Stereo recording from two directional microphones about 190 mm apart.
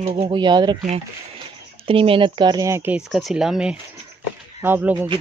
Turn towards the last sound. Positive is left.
turn(degrees=-10)  # may be behind; listen again after turning